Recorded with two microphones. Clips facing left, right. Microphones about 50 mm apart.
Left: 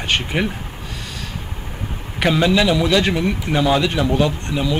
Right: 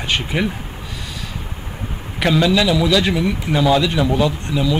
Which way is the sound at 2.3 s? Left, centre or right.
Centre.